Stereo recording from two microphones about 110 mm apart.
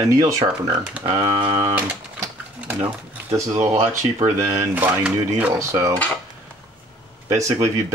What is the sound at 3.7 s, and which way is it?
Speech, 30° right (ahead or behind).